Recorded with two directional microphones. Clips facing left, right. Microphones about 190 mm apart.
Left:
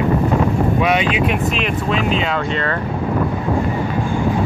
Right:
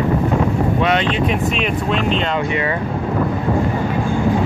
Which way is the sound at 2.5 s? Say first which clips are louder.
Right 1 dB; 15° right (ahead or behind).